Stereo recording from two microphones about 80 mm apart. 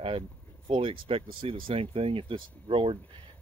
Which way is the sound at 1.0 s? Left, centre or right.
Right.